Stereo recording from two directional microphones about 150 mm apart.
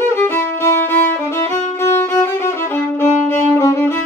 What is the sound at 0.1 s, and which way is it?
Music, 15° left (ahead or behind).